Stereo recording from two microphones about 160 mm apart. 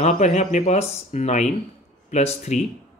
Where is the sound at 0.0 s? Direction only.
45° left (ahead or behind).